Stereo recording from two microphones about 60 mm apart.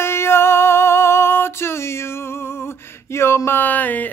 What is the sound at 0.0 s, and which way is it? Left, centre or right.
Music, left.